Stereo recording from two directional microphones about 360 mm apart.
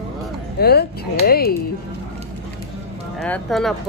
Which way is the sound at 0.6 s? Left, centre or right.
Left.